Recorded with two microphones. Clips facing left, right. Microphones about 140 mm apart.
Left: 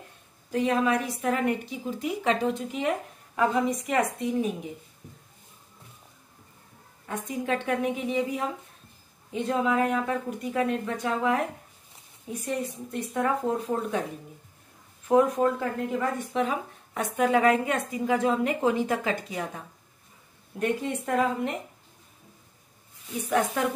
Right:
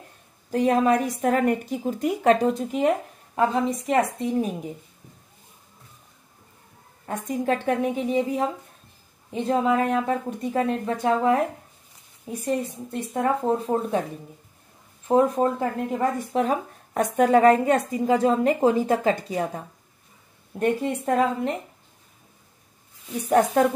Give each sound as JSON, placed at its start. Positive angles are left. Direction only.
{"t": 0.5, "sound": "a woman's voice", "side_deg": -40}
{"t": 7.1, "sound": "a woman's voice", "side_deg": -40}
{"t": 13.1, "sound": "a woman's voice", "side_deg": -35}
{"t": 15.0, "sound": "a woman's voice", "side_deg": -30}
{"t": 16.0, "sound": "a woman's voice", "side_deg": -40}
{"t": 23.2, "sound": "a woman's voice", "side_deg": -40}